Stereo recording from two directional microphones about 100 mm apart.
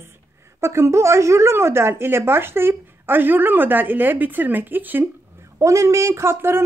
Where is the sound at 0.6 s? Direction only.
30° right (ahead or behind).